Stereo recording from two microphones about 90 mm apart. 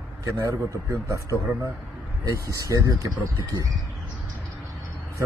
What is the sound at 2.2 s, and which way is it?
Speech, 40° right (ahead or behind).